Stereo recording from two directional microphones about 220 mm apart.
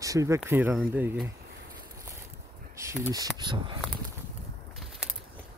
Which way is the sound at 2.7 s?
10° right (ahead or behind).